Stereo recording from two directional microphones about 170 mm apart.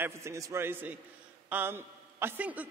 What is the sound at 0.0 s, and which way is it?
A man's voice, 15° right (ahead or behind).